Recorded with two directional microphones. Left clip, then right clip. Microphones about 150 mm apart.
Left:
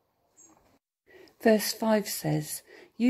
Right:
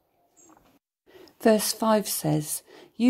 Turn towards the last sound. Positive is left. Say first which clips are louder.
# right 3 dB
turn(degrees=-35)  # may be behind; listen again after turning